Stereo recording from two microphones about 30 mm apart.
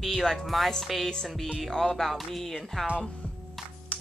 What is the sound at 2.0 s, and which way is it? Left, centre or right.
Speech, centre.